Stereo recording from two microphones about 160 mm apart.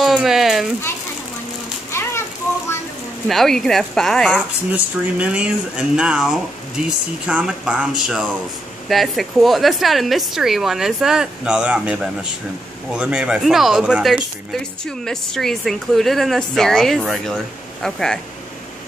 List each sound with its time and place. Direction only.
0.0 s speech: centre (ahead or behind)
1.9 s a sound: 15° left (ahead or behind)
3.3 s speech: centre (ahead or behind)
4.7 s speech: 10° right (ahead or behind)